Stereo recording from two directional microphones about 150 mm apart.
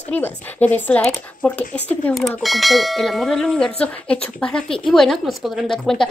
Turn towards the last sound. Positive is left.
turn(degrees=5)  # may be behind; listen again after turning